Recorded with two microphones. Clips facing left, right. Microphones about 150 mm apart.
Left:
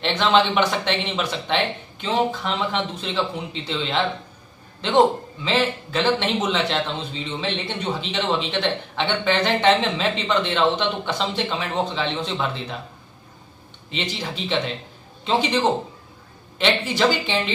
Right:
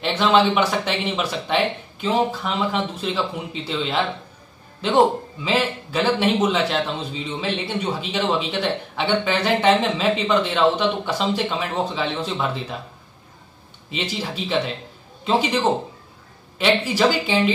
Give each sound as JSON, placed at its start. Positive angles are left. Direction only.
{"t": 0.0, "sound": "a man's voice", "side_deg": -5}
{"t": 13.8, "sound": "a man's voice", "side_deg": -5}